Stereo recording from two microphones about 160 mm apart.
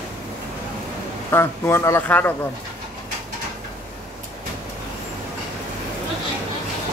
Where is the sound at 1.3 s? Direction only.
15° left (ahead or behind).